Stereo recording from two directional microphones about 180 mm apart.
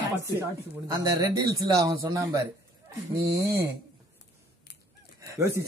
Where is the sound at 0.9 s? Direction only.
20° right (ahead or behind).